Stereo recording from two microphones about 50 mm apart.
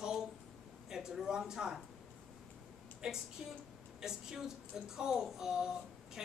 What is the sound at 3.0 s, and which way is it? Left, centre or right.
Speech, centre.